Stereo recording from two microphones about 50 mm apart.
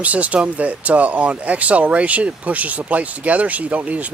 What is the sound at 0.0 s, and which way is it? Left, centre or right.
Speech, right.